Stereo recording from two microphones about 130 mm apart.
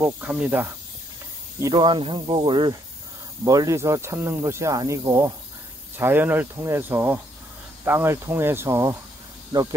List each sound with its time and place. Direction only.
0.0 s speech: 15° right (ahead or behind)
1.6 s speech: 35° right (ahead or behind)
3.4 s speech: 25° right (ahead or behind)